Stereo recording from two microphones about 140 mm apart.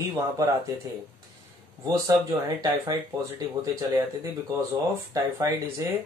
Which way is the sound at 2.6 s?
30° right (ahead or behind).